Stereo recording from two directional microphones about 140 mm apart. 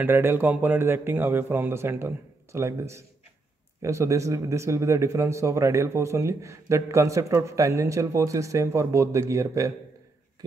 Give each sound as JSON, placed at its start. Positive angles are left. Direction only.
{"t": 0.0, "sound": "a man's voice", "side_deg": -15}